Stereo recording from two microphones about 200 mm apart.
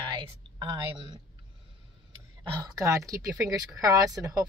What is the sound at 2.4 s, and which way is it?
A woman's voice, 20° right (ahead or behind).